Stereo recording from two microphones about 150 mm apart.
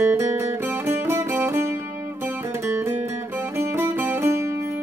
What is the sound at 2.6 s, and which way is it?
Music, 15° right (ahead or behind).